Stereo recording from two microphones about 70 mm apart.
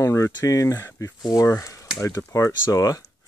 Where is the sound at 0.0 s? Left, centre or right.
Left.